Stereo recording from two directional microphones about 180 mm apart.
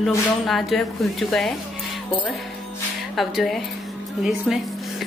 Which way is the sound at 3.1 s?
Centre (ahead or behind).